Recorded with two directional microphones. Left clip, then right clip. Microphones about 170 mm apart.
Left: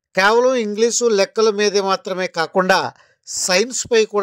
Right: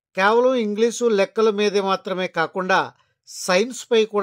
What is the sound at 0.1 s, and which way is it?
Speech, 30° left (ahead or behind).